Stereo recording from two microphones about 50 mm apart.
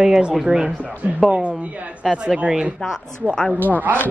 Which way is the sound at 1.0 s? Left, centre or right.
Right.